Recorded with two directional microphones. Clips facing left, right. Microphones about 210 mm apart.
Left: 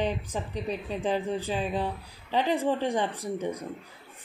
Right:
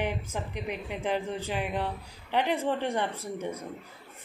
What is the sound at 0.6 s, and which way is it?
Speech, 15° right (ahead or behind).